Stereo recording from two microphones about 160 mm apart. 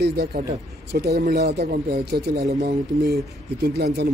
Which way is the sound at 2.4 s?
45° right (ahead or behind).